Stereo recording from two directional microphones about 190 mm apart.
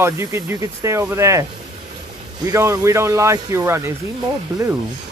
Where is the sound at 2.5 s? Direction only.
15° right (ahead or behind).